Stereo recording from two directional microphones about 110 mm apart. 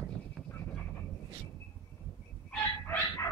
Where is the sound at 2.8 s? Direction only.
20° left (ahead or behind).